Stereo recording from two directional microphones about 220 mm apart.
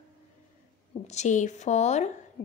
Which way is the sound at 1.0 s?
30° left (ahead or behind).